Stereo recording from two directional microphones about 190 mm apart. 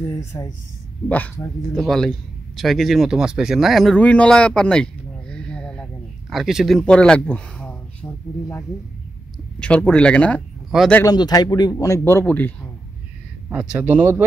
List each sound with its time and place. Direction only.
0.1 s a man's voice: 15° left (ahead or behind)
11.0 s a man's voice: 20° left (ahead or behind)
13.5 s speech: 5° right (ahead or behind)